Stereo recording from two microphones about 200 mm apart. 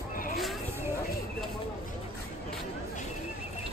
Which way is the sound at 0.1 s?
45° left (ahead or behind).